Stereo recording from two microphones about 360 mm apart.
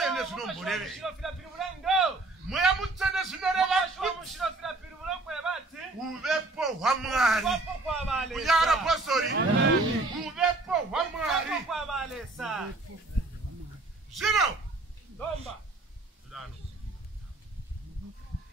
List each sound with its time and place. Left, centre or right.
0.0 s a man's voice: centre
2.5 s a sound: centre
6.2 s a man's voice: centre
9.3 s speech: right
10.2 s a sound: centre
14.1 s a man's voice: centre